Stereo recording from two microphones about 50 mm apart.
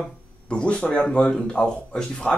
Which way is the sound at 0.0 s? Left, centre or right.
Centre.